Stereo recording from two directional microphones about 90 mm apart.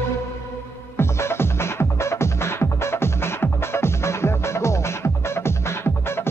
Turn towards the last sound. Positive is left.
turn(degrees=25)  # may be behind; listen again after turning